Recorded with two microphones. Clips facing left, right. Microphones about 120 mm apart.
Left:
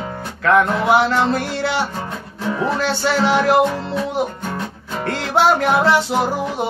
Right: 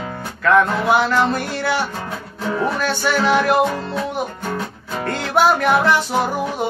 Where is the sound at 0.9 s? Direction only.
25° left (ahead or behind).